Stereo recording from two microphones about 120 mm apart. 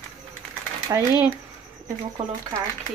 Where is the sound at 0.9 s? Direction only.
35° right (ahead or behind).